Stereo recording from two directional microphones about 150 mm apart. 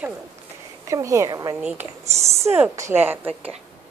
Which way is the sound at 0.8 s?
20° right (ahead or behind).